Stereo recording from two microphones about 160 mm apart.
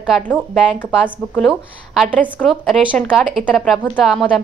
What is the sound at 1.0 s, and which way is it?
Speech, 5° left (ahead or behind).